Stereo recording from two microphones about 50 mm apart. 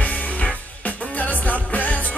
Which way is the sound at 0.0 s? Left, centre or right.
Left.